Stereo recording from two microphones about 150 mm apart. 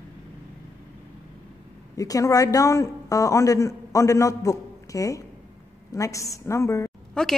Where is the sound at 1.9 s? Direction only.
20° left (ahead or behind).